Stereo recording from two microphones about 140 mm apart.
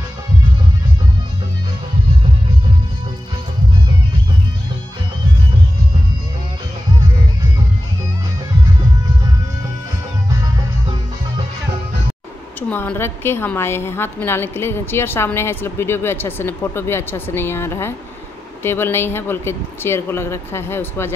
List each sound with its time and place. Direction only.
12.5 s a woman's voice: 10° left (ahead or behind)